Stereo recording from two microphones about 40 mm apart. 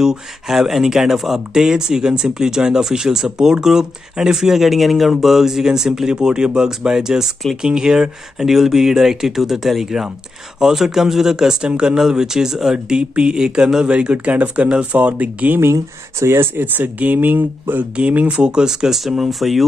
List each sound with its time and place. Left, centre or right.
0.0 s speech: centre
13.9 s speech: right
16.3 s speech: right
16.6 s speech: right
18.3 s speech: right; by 19.6 s centre